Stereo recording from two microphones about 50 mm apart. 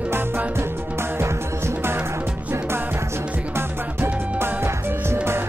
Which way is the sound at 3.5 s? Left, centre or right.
Right.